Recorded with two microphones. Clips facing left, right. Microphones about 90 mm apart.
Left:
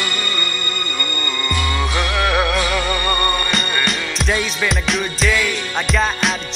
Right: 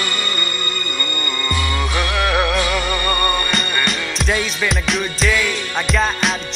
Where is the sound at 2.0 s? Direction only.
20° left (ahead or behind).